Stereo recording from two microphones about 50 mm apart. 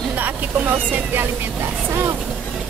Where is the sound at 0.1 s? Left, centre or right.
Right.